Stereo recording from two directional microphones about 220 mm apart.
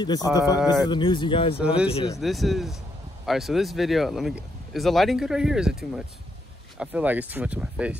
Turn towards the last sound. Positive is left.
turn(degrees=-5)  # may be behind; listen again after turning